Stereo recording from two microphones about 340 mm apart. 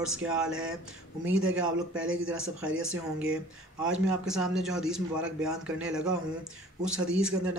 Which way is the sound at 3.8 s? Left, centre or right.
Centre.